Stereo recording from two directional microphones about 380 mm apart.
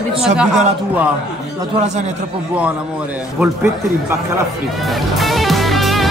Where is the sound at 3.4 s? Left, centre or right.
Centre.